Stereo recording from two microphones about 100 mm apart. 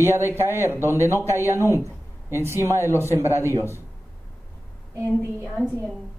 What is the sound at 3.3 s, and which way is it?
Speech, 25° left (ahead or behind).